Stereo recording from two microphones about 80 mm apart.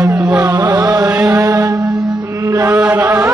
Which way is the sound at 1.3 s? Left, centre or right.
Right.